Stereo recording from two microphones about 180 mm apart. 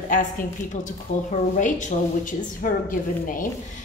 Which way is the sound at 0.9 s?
45° left (ahead or behind).